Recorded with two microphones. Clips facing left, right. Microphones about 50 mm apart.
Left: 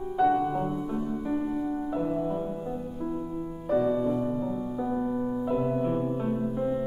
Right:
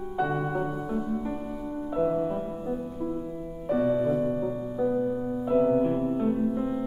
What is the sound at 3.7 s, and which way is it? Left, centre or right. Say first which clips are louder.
Music: right 1 dB; centre.